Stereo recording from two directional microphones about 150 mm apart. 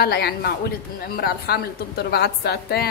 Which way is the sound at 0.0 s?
90° left.